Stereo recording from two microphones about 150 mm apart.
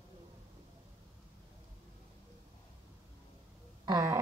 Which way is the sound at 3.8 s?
25° right (ahead or behind).